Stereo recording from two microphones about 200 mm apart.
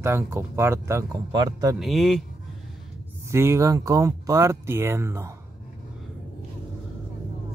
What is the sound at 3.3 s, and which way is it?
Speech, 15° right (ahead or behind).